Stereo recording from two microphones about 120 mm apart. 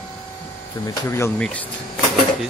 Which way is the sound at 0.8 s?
25° left (ahead or behind).